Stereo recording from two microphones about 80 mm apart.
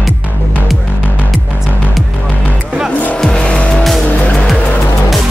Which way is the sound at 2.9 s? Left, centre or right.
Centre.